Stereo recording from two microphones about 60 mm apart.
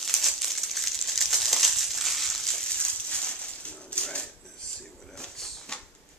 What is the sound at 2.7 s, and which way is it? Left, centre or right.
Dog, centre.